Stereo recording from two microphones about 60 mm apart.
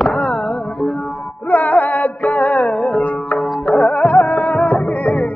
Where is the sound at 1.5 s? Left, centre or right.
Left.